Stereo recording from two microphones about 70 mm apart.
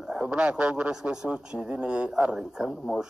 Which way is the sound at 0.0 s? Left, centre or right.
Centre.